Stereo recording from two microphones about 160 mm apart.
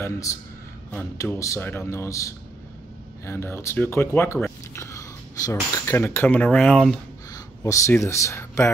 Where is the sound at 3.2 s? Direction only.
15° left (ahead or behind).